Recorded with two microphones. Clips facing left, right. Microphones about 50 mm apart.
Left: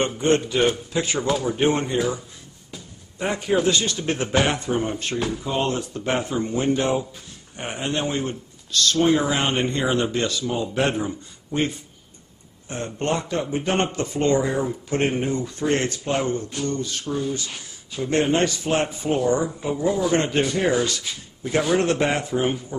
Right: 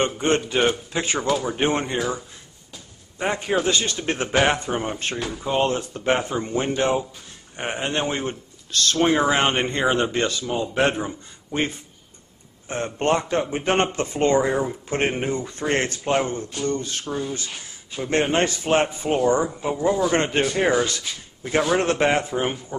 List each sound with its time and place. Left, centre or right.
0.0 s speech: centre
3.2 s speech: centre
7.5 s speech: right
12.6 s speech: right
15.7 s speech: right
17.1 s speech: centre
19.3 s speech: centre